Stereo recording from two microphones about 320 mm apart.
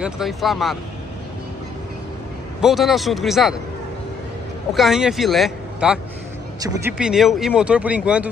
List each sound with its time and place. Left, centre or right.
0.0 s speech: centre
2.6 s speech: centre
4.7 s speech: centre